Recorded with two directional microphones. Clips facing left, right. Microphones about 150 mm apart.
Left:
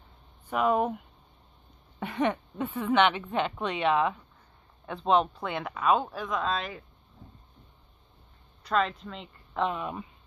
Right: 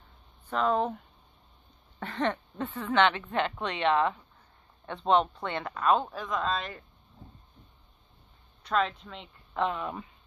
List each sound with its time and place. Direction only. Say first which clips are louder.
0.5 s speech: left 2 dB; 10° left (ahead or behind)
8.6 s speech: left 1 dB; centre (ahead or behind)
9.6 s speech: even; 15° left (ahead or behind)